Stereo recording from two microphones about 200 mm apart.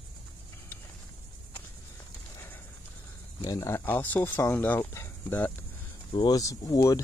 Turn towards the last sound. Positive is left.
turn(degrees=15)  # may be behind; listen again after turning